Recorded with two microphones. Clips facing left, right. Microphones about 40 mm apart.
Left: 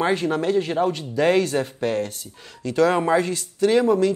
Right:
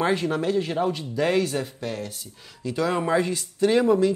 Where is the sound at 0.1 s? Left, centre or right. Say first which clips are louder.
Left 2 dB; left.